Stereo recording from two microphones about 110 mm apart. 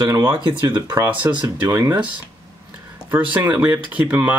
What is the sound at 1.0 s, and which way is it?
Speech, 15° right (ahead or behind).